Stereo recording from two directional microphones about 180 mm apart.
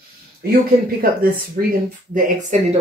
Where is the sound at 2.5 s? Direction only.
40° right (ahead or behind).